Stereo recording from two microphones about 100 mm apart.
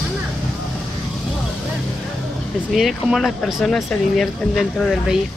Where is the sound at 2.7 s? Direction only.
Centre (ahead or behind).